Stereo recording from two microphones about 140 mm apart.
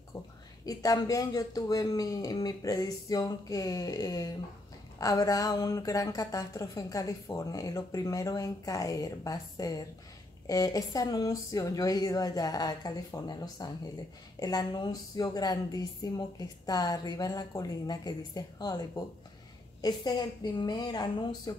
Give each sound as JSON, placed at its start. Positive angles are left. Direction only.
{"t": 0.7, "sound": "a woman's voice", "side_deg": 25}